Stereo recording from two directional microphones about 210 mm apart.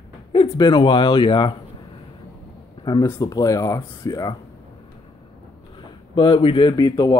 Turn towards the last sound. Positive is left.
turn(degrees=20)  # may be behind; listen again after turning